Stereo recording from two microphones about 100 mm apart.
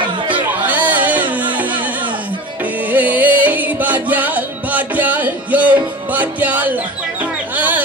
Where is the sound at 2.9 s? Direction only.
15° right (ahead or behind).